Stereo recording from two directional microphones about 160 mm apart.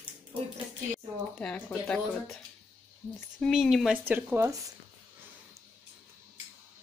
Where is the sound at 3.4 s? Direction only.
Centre (ahead or behind).